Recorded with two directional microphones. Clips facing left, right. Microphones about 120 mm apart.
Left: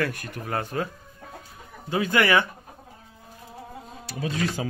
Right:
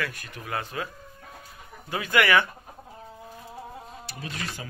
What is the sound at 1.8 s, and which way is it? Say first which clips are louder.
Speech: left 2 dB; 30° left (ahead or behind).